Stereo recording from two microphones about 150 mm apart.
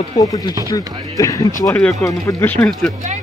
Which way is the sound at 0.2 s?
25° left (ahead or behind).